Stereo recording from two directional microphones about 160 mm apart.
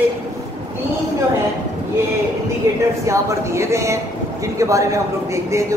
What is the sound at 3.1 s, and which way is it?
Speech, 20° right (ahead or behind).